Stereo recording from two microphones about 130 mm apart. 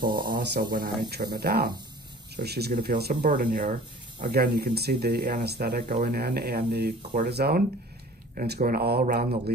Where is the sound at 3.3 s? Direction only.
80° right.